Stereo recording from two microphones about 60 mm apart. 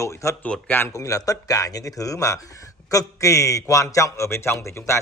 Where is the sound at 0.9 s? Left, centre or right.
Left.